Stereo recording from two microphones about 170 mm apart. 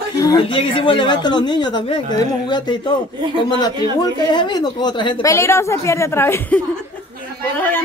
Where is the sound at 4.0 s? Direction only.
25° left (ahead or behind).